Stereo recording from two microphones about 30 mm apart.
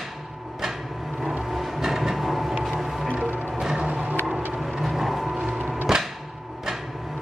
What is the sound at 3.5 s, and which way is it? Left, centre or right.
Music, centre.